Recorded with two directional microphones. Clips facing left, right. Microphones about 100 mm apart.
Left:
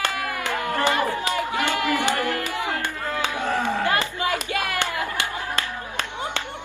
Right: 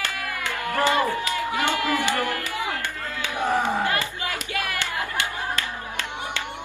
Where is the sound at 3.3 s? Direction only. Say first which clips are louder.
Right 4 dB; 15° right (ahead or behind).